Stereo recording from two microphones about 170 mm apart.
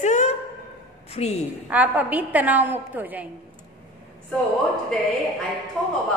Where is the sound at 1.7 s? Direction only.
10° right (ahead or behind).